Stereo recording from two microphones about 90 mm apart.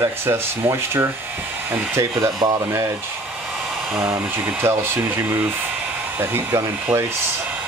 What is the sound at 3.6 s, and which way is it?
Hair dryer, 5° right (ahead or behind).